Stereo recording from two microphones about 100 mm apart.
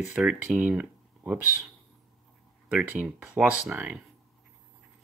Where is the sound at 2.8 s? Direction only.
15° right (ahead or behind).